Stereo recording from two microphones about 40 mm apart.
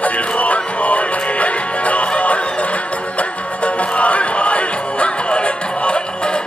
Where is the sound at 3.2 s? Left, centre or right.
Left.